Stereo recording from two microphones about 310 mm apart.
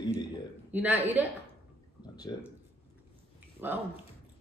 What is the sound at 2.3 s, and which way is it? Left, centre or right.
Speech, centre.